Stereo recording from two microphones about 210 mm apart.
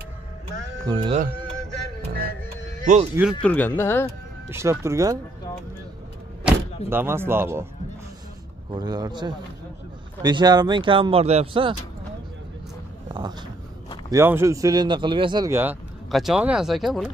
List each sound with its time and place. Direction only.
0.8 s speech: 25° right (ahead or behind)
2.0 s music: 50° right (ahead or behind)
2.8 s speech: 35° right (ahead or behind)
3.4 s speech: 10° left (ahead or behind)
4.5 s speech: 15° right (ahead or behind)
6.4 s speech: 10° right (ahead or behind)
8.7 s speech: 20° right (ahead or behind)
14.1 s speech: 10° right (ahead or behind)